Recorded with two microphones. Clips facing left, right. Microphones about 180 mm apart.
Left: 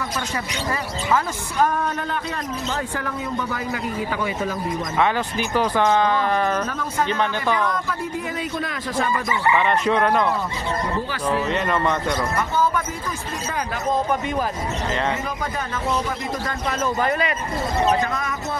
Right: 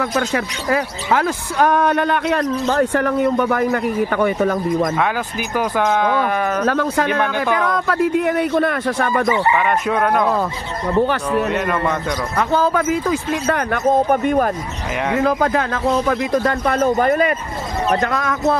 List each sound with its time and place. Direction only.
0.0 s speech: 75° right (ahead or behind); by 4.8 s 55° right (ahead or behind)
5.6 s speech: 10° right (ahead or behind)
6.1 s speech: 75° right (ahead or behind); by 9.4 s 60° right (ahead or behind)
9.6 s speech: 5° right (ahead or behind)
11.0 s speech: 60° right (ahead or behind)
12.4 s speech: 85° right; by 14.5 s 55° right (ahead or behind)
15.1 s speech: 80° right; by 17.3 s 45° right (ahead or behind)
18.0 s speech: 80° right